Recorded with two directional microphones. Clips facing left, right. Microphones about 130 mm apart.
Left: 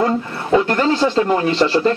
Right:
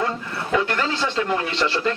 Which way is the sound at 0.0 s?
30° left (ahead or behind).